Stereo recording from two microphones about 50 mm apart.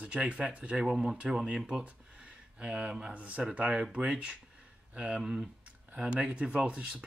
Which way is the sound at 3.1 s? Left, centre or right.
Right.